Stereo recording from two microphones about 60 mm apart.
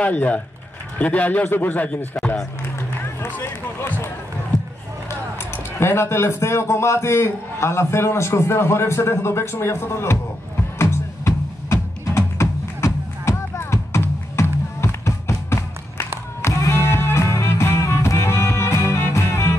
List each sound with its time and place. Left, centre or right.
0.0 s speech: left
3.2 s speech: left
5.8 s a man's voice: left
10.8 s music: left